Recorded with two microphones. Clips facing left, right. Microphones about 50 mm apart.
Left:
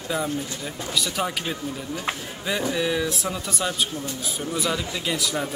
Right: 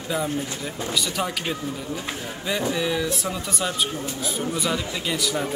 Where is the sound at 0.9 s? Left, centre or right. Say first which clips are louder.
Left 1 dB; centre.